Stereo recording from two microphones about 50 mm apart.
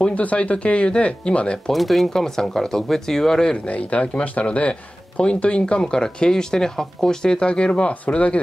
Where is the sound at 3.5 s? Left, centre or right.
Left.